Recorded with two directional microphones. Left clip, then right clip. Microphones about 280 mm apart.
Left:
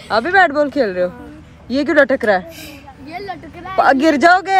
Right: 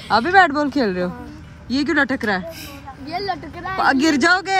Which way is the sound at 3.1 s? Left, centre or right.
Right.